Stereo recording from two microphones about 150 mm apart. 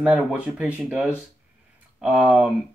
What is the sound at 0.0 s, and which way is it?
Speech, 5° right (ahead or behind).